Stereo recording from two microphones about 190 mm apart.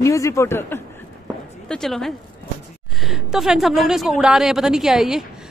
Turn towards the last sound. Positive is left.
turn(degrees=0)  # may be behind; listen again after turning